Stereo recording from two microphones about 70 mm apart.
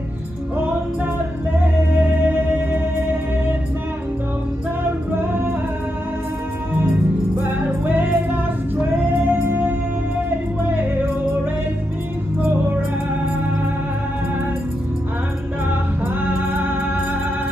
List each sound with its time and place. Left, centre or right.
1.6 s music: right
7.3 s music: right
15.7 s music: right